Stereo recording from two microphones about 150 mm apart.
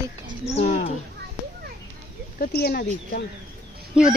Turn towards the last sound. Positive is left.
turn(degrees=-5)  # may be behind; listen again after turning